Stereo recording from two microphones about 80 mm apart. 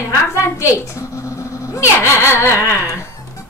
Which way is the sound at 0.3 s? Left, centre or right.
Left.